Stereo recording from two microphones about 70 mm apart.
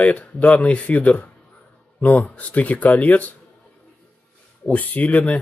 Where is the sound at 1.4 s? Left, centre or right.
Centre.